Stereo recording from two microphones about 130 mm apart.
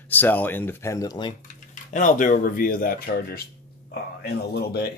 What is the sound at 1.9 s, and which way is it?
Speech, 75° left (ahead or behind).